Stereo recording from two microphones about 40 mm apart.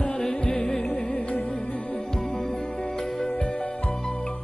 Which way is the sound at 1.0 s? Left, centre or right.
Left.